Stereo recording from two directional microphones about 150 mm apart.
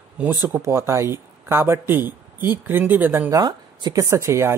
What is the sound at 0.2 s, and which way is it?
Speech, 15° right (ahead or behind).